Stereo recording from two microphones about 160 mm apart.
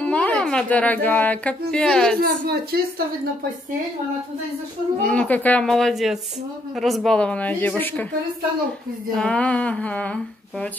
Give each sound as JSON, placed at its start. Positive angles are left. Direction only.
{"t": 0.0, "sound": "a sound", "side_deg": 10}
{"t": 1.0, "sound": "speech", "side_deg": 10}
{"t": 2.1, "sound": "a woman's voice", "side_deg": -75}
{"t": 5.0, "sound": "speech", "side_deg": 5}
{"t": 9.1, "sound": "speech", "side_deg": 5}